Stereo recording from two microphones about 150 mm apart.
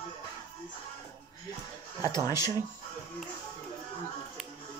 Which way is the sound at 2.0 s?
25° left (ahead or behind).